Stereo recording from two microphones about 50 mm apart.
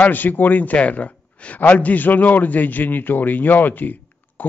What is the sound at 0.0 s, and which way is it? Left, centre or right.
A man's voice, left.